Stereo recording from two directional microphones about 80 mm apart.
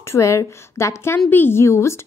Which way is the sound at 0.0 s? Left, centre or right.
Left.